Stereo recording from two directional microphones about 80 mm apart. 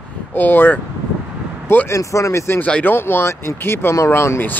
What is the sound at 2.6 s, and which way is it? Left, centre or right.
Speech, left.